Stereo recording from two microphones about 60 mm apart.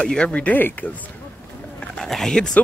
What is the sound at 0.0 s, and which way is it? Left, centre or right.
Speech, centre.